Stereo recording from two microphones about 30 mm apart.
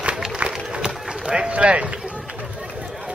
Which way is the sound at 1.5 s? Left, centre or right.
Right.